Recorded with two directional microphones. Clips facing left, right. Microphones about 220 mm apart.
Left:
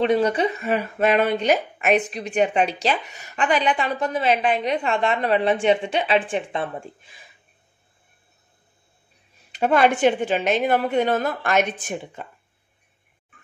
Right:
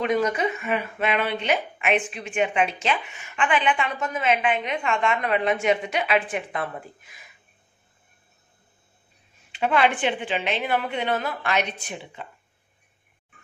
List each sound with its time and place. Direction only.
0.0 s speech: 30° left (ahead or behind)
9.5 s a woman's voice: 40° left (ahead or behind)